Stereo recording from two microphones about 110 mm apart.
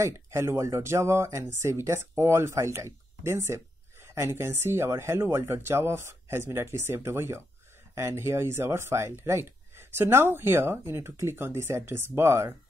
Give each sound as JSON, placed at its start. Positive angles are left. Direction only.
{"t": 0.0, "sound": "speech", "side_deg": -25}